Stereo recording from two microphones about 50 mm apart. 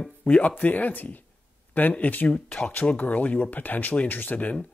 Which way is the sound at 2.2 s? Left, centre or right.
Left.